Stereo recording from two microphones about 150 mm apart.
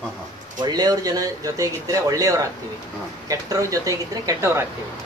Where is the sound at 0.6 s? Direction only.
25° right (ahead or behind).